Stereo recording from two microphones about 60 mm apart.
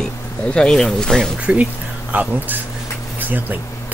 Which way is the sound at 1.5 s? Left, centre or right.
Right.